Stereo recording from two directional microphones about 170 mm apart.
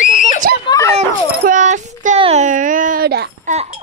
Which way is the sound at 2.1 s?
35° right (ahead or behind).